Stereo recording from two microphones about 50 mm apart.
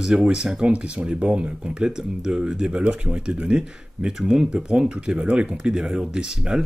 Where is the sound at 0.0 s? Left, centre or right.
Centre.